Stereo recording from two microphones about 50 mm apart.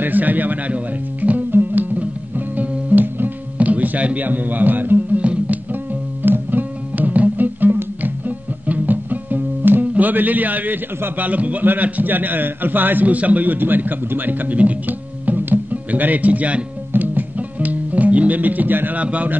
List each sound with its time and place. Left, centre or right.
0.0 s a man's voice: right
1.5 s music: right
5.2 s music: right
6.2 s music: right
11.1 s a man's voice: right
16.9 s music: right